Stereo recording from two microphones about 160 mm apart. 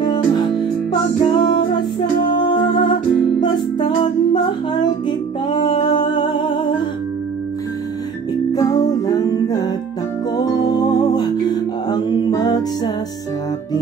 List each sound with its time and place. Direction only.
1.2 s music: 30° left (ahead or behind)
8.5 s music: 25° left (ahead or behind)